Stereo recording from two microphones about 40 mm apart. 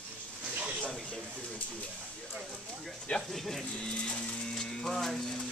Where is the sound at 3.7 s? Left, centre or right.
Left.